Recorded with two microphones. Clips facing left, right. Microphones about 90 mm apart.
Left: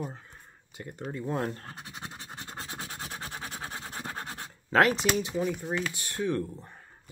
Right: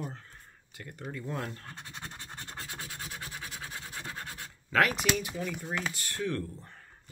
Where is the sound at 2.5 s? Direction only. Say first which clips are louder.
Left 3 dB; 25° left (ahead or behind).